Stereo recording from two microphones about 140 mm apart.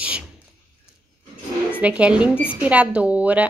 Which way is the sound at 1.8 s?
10° right (ahead or behind).